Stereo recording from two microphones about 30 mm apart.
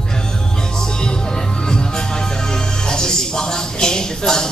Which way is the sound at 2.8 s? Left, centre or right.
Left.